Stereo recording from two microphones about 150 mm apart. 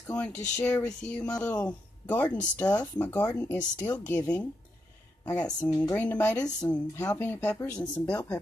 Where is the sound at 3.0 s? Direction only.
20° left (ahead or behind).